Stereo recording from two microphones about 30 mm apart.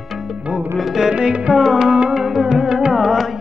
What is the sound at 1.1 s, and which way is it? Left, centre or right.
Music, right.